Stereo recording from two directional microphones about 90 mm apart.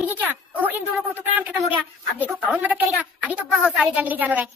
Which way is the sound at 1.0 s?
20° right (ahead or behind).